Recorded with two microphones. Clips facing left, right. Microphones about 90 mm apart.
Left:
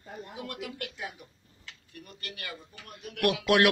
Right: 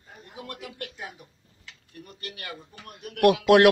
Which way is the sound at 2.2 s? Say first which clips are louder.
Right 3 dB; 35° right (ahead or behind).